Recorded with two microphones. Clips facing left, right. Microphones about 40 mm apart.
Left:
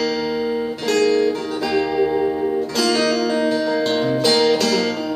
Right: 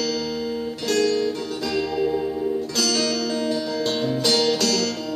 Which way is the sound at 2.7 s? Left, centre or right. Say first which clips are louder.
Left 7 dB; centre.